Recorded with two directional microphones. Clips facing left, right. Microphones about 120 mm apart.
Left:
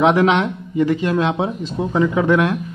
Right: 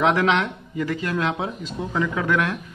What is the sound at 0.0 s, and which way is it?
Speech, 20° left (ahead or behind).